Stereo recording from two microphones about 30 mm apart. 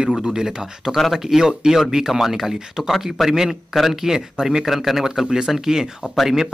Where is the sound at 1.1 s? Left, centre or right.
Centre.